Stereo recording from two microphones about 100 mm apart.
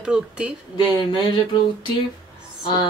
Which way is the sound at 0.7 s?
50° left (ahead or behind).